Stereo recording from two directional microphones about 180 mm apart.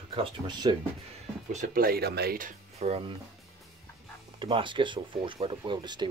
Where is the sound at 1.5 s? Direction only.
45° right (ahead or behind).